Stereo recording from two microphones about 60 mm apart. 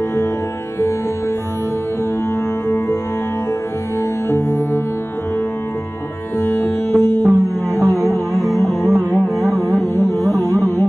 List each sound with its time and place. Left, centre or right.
4.3 s music: left
6.4 s music: left
7.9 s music: centre
10.3 s carnatic music: left